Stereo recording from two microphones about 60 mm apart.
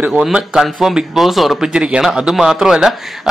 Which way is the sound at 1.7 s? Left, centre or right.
Centre.